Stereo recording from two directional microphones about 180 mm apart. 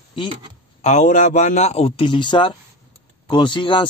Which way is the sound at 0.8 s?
40° left (ahead or behind).